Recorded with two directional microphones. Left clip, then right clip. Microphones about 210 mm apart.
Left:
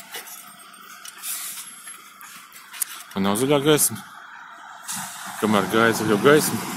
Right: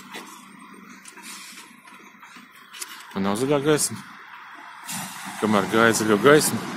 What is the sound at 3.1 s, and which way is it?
Speech, 5° left (ahead or behind).